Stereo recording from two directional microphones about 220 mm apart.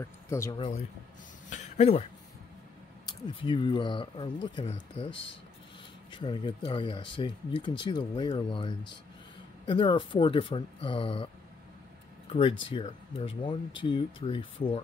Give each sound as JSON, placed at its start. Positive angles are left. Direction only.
{"t": 0.0, "sound": "speech", "side_deg": 15}
{"t": 1.5, "sound": "a sound", "side_deg": 30}
{"t": 3.4, "sound": "speech", "side_deg": 20}
{"t": 12.3, "sound": "speech", "side_deg": 25}